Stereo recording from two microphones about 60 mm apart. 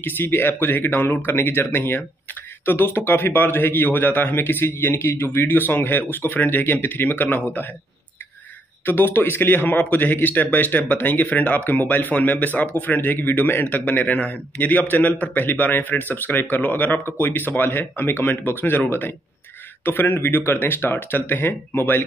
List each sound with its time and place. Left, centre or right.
0.0 s a man's voice: left
8.8 s a man's voice: left